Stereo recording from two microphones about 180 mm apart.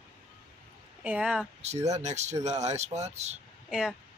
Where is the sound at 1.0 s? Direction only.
5° right (ahead or behind).